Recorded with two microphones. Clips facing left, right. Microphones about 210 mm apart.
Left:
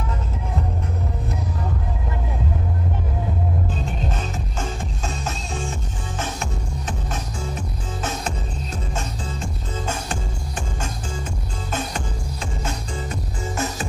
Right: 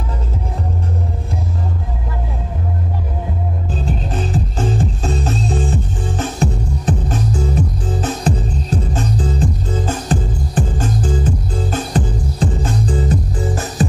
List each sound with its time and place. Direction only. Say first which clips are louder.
3.7 s music: right 5 dB; 35° right (ahead or behind)